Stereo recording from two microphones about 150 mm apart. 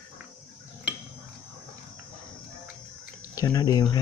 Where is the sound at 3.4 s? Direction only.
25° left (ahead or behind).